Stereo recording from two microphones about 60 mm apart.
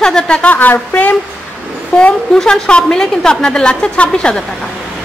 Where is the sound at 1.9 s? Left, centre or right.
Centre.